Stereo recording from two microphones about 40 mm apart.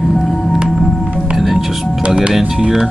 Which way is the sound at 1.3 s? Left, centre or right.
Centre.